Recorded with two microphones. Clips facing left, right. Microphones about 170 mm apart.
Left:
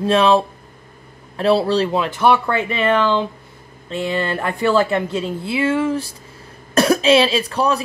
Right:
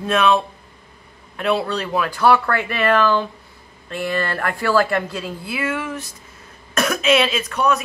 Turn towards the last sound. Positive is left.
turn(degrees=30)  # may be behind; listen again after turning